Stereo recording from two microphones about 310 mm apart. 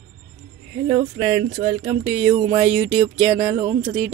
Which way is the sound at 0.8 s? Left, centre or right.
Right.